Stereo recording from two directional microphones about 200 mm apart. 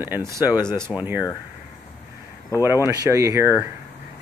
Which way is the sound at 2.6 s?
15° right (ahead or behind).